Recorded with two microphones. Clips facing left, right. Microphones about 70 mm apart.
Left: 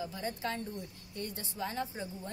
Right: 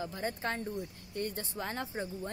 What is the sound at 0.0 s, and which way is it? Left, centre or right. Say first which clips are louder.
A woman's voice: right 1 dB; right.